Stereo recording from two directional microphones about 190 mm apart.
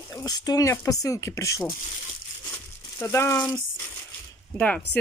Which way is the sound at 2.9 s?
10° left (ahead or behind).